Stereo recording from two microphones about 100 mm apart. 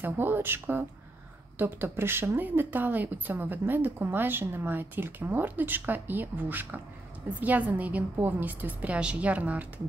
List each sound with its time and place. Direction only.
0.0 s a woman's voice: 20° right (ahead or behind)